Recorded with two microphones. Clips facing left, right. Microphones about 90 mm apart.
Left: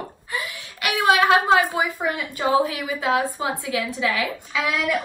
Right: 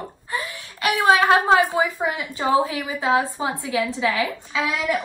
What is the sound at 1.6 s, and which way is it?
A woman's voice, 20° right (ahead or behind).